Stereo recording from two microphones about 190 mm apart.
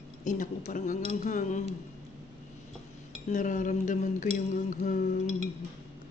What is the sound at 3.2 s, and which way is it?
Speech, 40° left (ahead or behind).